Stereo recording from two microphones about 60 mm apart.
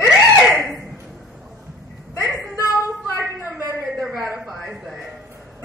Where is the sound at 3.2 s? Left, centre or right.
Right.